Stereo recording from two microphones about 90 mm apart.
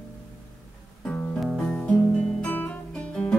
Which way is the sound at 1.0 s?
10° left (ahead or behind).